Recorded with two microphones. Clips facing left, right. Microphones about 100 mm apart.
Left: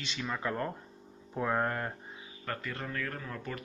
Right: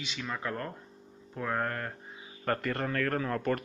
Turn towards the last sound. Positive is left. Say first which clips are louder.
# right 10 dB
turn(degrees=-65)  # may be behind; listen again after turning